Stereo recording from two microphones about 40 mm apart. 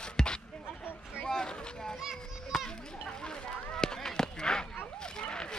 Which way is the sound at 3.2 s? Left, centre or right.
Centre.